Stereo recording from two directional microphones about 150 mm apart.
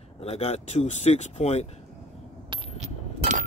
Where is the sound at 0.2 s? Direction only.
40° left (ahead or behind).